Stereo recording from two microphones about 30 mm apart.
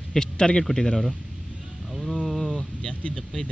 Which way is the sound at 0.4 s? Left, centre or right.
Left.